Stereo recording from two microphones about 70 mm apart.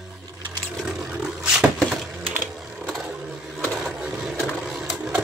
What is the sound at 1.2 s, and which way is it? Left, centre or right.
Roaring cats, centre.